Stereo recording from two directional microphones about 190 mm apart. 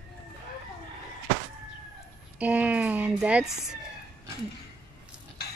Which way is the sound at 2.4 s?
5° right (ahead or behind).